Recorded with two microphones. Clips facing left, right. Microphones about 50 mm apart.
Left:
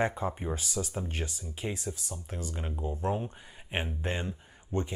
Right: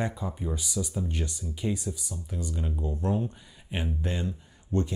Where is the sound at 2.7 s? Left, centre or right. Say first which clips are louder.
Right 1 dB; centre.